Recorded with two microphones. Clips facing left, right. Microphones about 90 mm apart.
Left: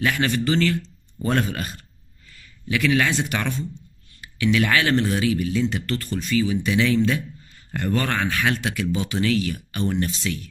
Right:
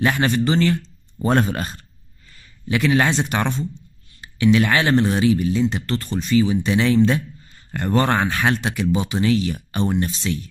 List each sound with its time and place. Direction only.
0.0 s speech: 30° right (ahead or behind)